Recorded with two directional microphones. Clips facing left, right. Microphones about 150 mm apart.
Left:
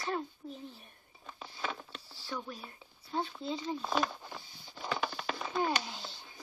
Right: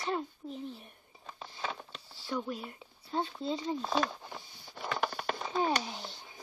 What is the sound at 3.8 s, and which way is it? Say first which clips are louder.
Speech: even; centre (ahead or behind).